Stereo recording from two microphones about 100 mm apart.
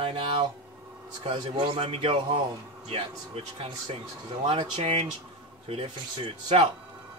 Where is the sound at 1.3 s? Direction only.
50° right (ahead or behind).